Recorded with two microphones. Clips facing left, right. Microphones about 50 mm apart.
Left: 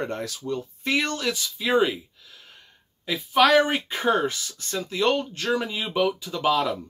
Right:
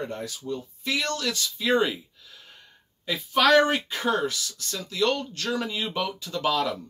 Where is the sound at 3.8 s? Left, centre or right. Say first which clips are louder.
Left 3 dB; left.